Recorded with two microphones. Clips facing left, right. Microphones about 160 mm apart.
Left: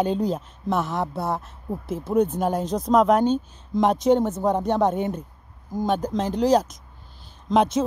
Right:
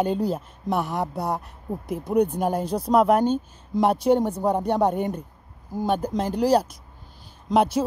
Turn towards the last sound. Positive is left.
turn(degrees=-10)  # may be behind; listen again after turning